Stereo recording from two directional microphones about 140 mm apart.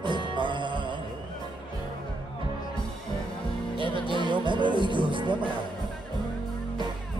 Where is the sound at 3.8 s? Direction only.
35° right (ahead or behind).